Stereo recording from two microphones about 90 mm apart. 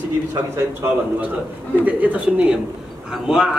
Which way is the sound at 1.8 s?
15° right (ahead or behind).